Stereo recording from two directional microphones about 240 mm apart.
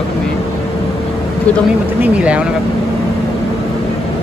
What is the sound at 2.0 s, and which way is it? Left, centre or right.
Speech, centre.